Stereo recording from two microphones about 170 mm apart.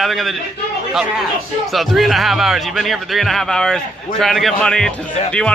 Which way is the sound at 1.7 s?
Centre (ahead or behind).